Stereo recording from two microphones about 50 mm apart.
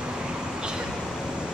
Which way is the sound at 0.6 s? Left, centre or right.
Centre.